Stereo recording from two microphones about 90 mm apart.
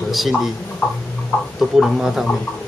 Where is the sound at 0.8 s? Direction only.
20° left (ahead or behind).